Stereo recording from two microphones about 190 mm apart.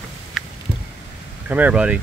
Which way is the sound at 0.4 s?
Centre (ahead or behind).